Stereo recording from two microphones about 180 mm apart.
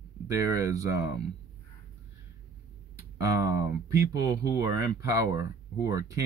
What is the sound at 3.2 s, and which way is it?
Speech, 20° right (ahead or behind).